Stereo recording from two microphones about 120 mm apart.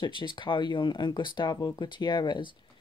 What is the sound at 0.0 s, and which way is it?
Speech, 40° left (ahead or behind).